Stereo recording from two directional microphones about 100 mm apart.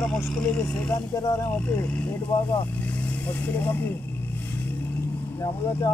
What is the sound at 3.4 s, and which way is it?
Speech, 15° left (ahead or behind).